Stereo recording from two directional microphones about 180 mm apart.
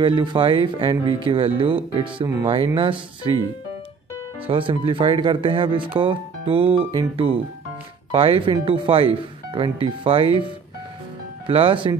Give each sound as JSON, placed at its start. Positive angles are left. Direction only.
{"t": 0.0, "sound": "speech", "side_deg": -25}
{"t": 4.5, "sound": "speech", "side_deg": -30}
{"t": 11.4, "sound": "speech", "side_deg": -30}